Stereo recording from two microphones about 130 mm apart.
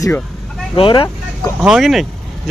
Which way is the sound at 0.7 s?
40° left (ahead or behind).